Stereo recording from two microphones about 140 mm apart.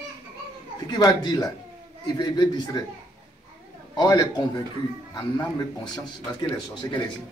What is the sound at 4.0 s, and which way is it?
Speech, 30° left (ahead or behind).